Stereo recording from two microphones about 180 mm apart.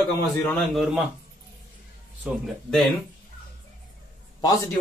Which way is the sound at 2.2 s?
5° right (ahead or behind).